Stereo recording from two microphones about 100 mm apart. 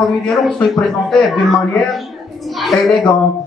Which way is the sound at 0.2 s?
5° left (ahead or behind).